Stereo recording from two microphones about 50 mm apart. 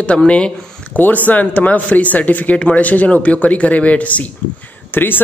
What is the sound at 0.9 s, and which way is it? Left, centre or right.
Speech, left.